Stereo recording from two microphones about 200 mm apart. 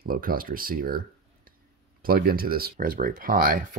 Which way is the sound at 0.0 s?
45° right (ahead or behind).